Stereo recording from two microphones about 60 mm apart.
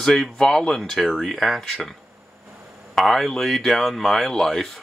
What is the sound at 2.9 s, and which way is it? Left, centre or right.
Speech, centre.